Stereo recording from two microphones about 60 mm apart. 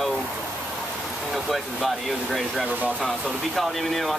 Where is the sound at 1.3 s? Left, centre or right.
Centre.